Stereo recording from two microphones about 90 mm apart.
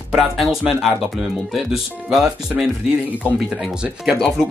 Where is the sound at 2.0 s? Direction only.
10° right (ahead or behind).